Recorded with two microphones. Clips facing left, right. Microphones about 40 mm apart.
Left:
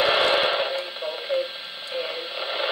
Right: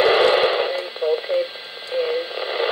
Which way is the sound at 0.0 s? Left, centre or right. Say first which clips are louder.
Right 5 dB; centre.